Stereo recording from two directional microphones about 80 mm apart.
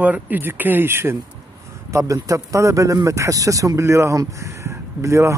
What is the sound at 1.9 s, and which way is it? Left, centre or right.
Speech, right.